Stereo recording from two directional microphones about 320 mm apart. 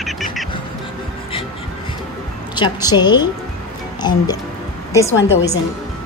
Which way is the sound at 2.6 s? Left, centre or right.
Centre.